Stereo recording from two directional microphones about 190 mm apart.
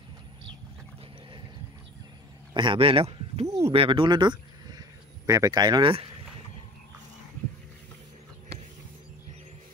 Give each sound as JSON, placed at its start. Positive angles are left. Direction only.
{"t": 2.5, "sound": "speech", "side_deg": -25}